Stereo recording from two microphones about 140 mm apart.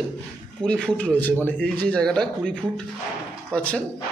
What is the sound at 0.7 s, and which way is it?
Speech, 5° left (ahead or behind).